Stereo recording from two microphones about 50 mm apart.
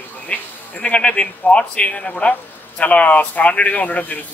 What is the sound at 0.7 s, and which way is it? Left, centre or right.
Speech, left.